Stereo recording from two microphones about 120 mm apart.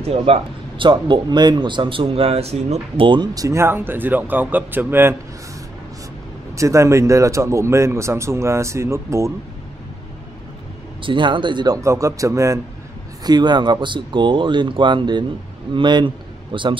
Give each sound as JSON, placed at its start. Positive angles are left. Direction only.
{"t": 0.0, "sound": "speech", "side_deg": -55}
{"t": 3.1, "sound": "speech", "side_deg": -35}
{"t": 3.4, "sound": "speech", "side_deg": -20}
{"t": 6.5, "sound": "speech", "side_deg": -25}
{"t": 11.0, "sound": "speech", "side_deg": -45}
{"t": 13.2, "sound": "speech", "side_deg": -35}